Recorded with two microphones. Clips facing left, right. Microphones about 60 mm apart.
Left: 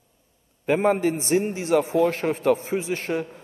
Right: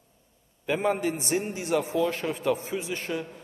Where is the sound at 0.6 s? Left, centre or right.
Left.